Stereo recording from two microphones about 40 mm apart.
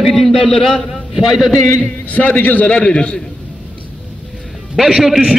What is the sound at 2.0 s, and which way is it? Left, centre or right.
Speech, left.